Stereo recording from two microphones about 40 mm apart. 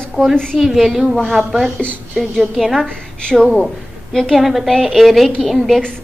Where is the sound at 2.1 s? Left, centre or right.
Centre.